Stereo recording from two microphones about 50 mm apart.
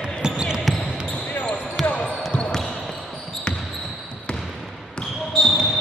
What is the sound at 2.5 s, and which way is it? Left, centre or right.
Basketball bounce, centre.